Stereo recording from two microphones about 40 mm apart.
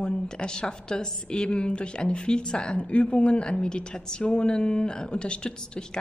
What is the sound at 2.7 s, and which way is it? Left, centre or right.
A woman's voice, left.